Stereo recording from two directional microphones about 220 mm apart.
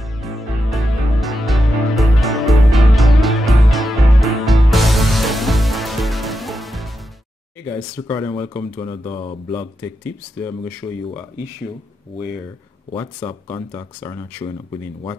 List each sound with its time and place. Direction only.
0.0 s music: centre (ahead or behind)
7.6 s speech: 10° left (ahead or behind)
9.1 s speech: 25° left (ahead or behind)
9.8 s speech: 10° left (ahead or behind)
12.9 s speech: 20° left (ahead or behind)